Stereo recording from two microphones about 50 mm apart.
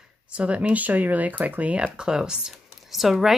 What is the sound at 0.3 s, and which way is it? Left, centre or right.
Speech, right.